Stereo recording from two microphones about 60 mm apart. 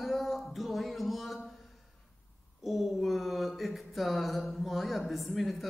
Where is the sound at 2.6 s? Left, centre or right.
Centre.